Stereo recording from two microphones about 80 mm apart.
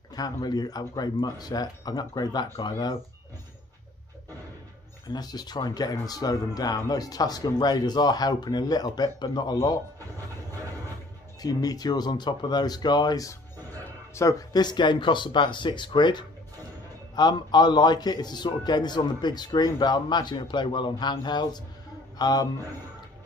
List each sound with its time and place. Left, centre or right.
0.1 s speech: left
5.0 s speech: left
11.4 s speech: left
14.2 s speech: left
14.5 s speech: left
22.2 s speech: left